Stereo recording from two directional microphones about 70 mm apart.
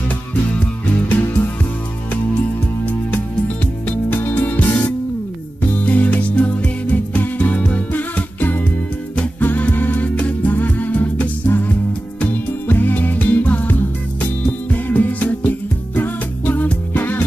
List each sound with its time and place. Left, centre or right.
4.1 s music: left